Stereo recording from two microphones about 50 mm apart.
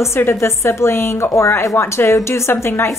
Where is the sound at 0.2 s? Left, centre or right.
Left.